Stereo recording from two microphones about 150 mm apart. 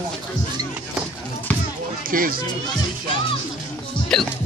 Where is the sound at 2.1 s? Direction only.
70° right (ahead or behind).